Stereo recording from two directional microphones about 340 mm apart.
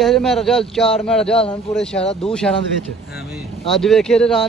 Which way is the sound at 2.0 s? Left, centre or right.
Centre.